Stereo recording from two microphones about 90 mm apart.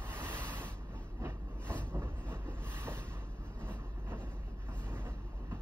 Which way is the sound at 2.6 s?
25° right (ahead or behind).